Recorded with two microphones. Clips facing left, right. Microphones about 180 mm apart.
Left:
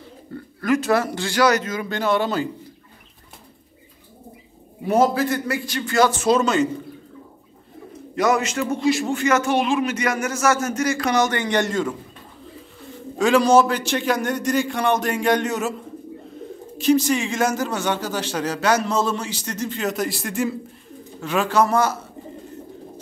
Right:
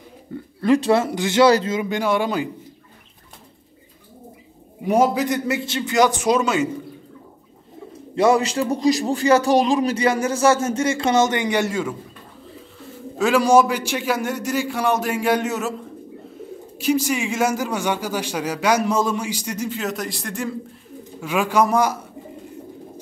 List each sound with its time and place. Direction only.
0.6 s speech: 30° right (ahead or behind)
1.8 s a man's voice: 15° right (ahead or behind)
4.8 s a man's voice: 15° right (ahead or behind)
8.2 s a man's voice: 30° right (ahead or behind); by 11.9 s 10° right (ahead or behind)
13.2 s a man's voice: 10° right (ahead or behind)
16.7 s a man's voice: 10° right (ahead or behind)
21.2 s a man's voice: 10° right (ahead or behind)